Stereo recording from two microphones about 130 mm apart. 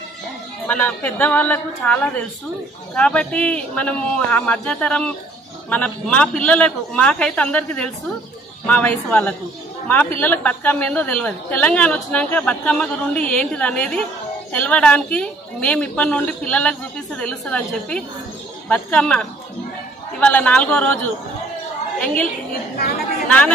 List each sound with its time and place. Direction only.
0.7 s a woman's voice: 10° left (ahead or behind)
22.0 s a woman's voice: 10° left (ahead or behind)